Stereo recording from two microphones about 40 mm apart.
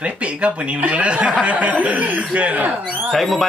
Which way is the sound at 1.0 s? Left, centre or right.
Right.